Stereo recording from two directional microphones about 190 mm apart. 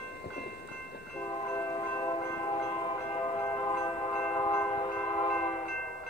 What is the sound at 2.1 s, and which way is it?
Wind chime, 30° left (ahead or behind).